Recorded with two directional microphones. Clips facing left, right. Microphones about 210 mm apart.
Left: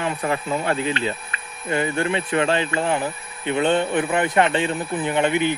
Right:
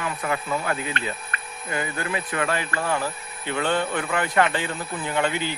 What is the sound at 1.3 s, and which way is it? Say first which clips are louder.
Hum: right 1 dB; 55° right (ahead or behind).